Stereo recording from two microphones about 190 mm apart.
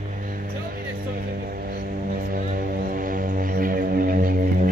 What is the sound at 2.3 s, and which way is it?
Music, 50° right (ahead or behind).